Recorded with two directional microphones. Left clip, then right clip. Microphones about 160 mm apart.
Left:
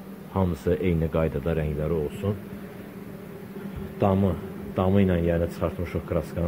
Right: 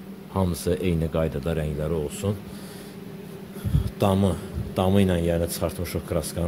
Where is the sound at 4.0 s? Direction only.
15° right (ahead or behind).